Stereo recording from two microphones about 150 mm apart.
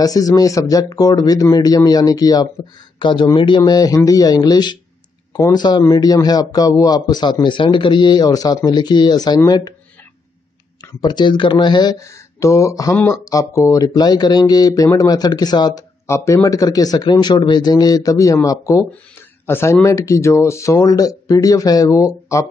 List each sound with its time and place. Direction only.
0.0 s a man's voice: 25° left (ahead or behind)
10.8 s a man's voice: 25° left (ahead or behind)